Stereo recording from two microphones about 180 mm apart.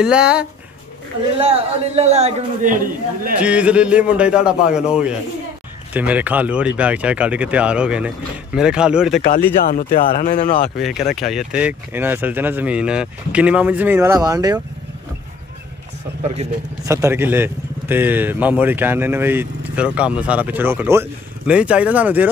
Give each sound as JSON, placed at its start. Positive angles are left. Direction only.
{"t": 0.0, "sound": "speech", "side_deg": -5}
{"t": 1.4, "sound": "a man's voice", "side_deg": -35}
{"t": 3.3, "sound": "speech", "side_deg": -5}
{"t": 9.7, "sound": "speech", "side_deg": 50}
{"t": 10.8, "sound": "speech", "side_deg": 0}
{"t": 16.2, "sound": "a man's voice", "side_deg": -40}
{"t": 16.8, "sound": "speech", "side_deg": -15}